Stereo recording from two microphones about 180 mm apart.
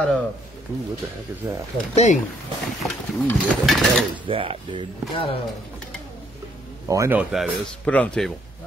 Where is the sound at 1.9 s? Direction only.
40° left (ahead or behind).